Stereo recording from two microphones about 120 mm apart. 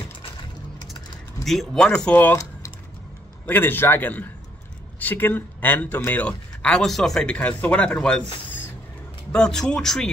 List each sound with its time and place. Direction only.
1.4 s speech: centre (ahead or behind)
3.4 s speech: 15° left (ahead or behind)
9.3 s speech: 5° left (ahead or behind)